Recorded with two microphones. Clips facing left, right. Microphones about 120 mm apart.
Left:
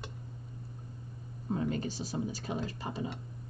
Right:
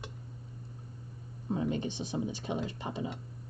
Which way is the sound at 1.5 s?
20° right (ahead or behind).